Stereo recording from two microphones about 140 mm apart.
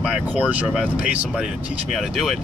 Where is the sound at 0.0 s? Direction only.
5° right (ahead or behind).